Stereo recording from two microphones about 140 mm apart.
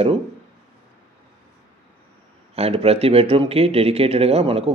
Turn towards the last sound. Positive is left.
turn(degrees=-45)  # may be behind; listen again after turning